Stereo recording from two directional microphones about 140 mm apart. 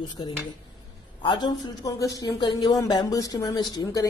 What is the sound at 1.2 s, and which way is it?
Speech, 30° left (ahead or behind).